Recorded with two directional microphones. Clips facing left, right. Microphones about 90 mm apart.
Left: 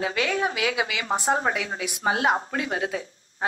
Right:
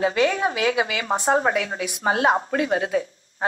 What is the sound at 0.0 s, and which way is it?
A woman's voice, 35° right (ahead or behind).